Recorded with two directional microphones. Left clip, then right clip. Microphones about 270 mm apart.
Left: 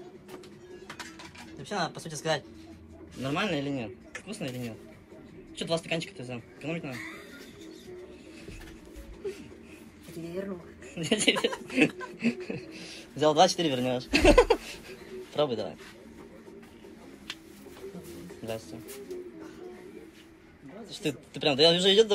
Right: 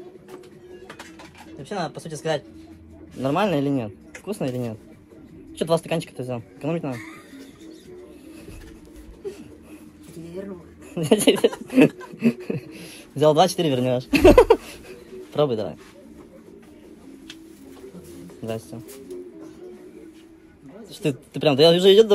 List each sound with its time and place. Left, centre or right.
1.6 s speech: centre
3.2 s a man's voice: centre
11.0 s a man's voice: centre
12.0 s a sound: centre
13.2 s a man's voice: right
20.9 s a man's voice: centre